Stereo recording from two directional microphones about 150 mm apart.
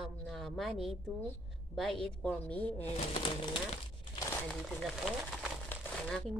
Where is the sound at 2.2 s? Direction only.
10° left (ahead or behind).